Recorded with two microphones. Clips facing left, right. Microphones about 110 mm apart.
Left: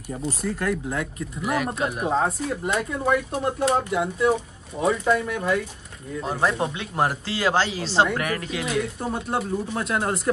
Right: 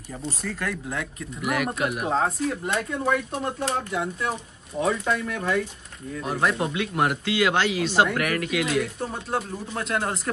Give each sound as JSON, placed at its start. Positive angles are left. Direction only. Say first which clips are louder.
{"t": 0.7, "sound": "speech", "louder": "left 5 dB", "side_deg": 5}
{"t": 1.4, "sound": "speech", "louder": "left 1 dB", "side_deg": 30}
{"t": 2.0, "sound": "speech", "louder": "left 1 dB", "side_deg": 5}
{"t": 6.6, "sound": "speech", "louder": "even", "side_deg": 30}
{"t": 9.1, "sound": "speech", "louder": "left 3 dB", "side_deg": 0}